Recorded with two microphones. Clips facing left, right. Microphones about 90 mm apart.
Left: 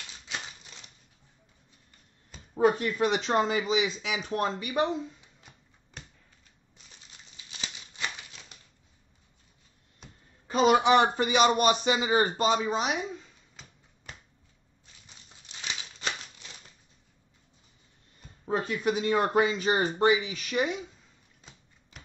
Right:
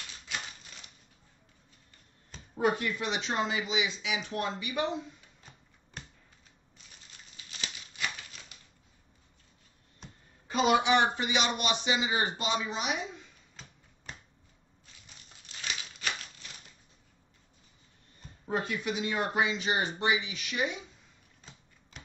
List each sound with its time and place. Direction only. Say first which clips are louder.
2.5 s speech: left 4 dB; 35° left (ahead or behind)
7.1 s crumpling: even; 20° left (ahead or behind)
10.5 s speech: left 4 dB; 40° left (ahead or behind)
15.4 s crumpling: even; 20° left (ahead or behind)
18.5 s speech: left 4 dB; 35° left (ahead or behind)